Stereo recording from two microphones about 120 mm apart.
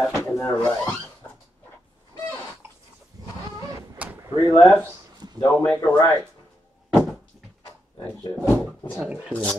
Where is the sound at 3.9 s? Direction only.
15° right (ahead or behind).